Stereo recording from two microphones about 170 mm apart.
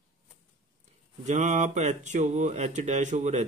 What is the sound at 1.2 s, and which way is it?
Speech, 45° right (ahead or behind).